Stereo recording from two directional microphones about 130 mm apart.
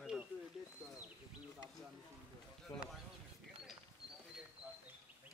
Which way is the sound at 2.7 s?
35° left (ahead or behind).